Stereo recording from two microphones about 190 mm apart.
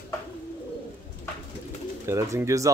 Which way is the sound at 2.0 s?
15° right (ahead or behind).